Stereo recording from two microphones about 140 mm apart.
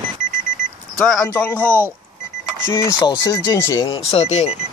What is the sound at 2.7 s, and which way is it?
Speech, 20° left (ahead or behind).